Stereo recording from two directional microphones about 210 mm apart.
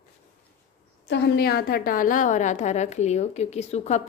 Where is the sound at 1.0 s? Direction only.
55° left (ahead or behind).